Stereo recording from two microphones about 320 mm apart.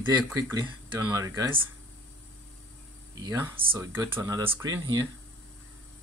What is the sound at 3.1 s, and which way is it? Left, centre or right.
Speech, centre.